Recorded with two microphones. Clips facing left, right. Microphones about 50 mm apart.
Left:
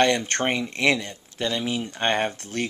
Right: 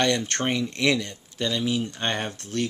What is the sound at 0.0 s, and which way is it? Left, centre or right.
Speech, left.